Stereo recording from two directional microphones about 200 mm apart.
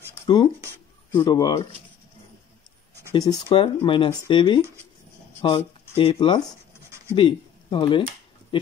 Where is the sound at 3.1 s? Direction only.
25° left (ahead or behind).